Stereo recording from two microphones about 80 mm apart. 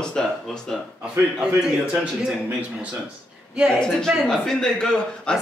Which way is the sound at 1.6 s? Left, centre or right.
Centre.